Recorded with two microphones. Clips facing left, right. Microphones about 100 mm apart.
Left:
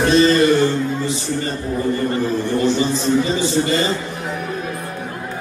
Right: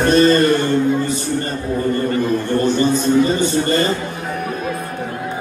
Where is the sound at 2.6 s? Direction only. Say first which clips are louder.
Right 2 dB; 50° right (ahead or behind).